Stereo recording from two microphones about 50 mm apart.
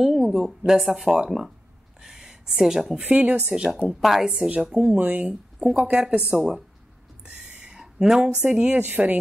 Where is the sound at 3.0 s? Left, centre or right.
Right.